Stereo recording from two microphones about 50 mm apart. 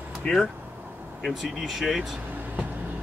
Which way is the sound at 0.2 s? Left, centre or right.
Left.